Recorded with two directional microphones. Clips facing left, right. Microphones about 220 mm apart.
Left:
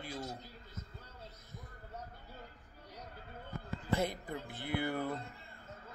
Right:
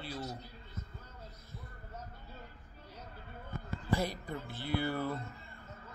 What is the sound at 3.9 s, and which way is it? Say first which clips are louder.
Speech: even; 20° left (ahead or behind).